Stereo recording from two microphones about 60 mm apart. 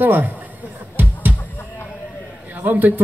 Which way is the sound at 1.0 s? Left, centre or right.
Right.